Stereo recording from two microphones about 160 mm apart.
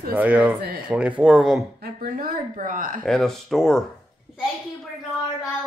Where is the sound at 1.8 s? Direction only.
65° right (ahead or behind).